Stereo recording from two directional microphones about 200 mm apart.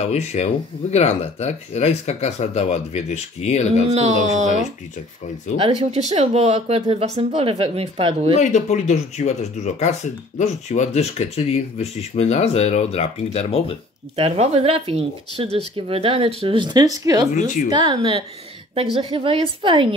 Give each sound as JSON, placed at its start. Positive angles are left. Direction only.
{"t": 0.0, "sound": "speech", "side_deg": 30}
{"t": 3.9, "sound": "speech", "side_deg": -30}
{"t": 5.6, "sound": "speech", "side_deg": -30}
{"t": 8.4, "sound": "speech", "side_deg": 35}
{"t": 14.1, "sound": "speech", "side_deg": -30}
{"t": 17.3, "sound": "speech", "side_deg": 40}
{"t": 17.6, "sound": "speech", "side_deg": -20}